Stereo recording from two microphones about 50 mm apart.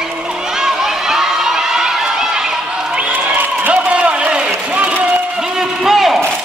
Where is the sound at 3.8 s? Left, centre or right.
Right.